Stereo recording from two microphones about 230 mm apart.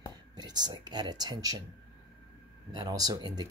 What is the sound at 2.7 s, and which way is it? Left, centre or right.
Speech, centre.